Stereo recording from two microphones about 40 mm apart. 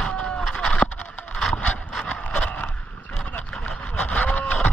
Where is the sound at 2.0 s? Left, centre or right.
Left.